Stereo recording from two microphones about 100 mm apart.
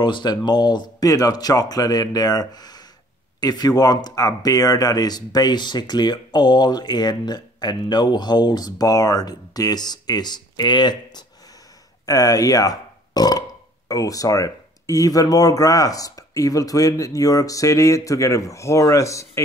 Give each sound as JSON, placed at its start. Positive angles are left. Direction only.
{"t": 0.0, "sound": "speech", "side_deg": 45}